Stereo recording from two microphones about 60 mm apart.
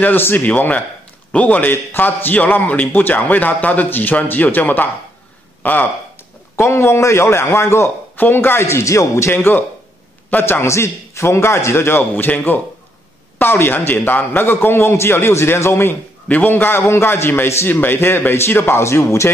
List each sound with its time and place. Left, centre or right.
0.0 s a man's voice: left
0.5 s a man's voice: left
1.7 s a man's voice: left
6.5 s a man's voice: left
8.2 s a man's voice: left
16.3 s a man's voice: left